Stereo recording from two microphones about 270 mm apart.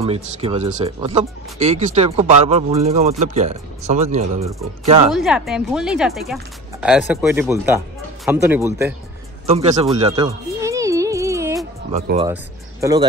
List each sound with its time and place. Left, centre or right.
0.0 s speech: right
5.1 s speech: centre
9.5 s music: right
11.9 s speech: right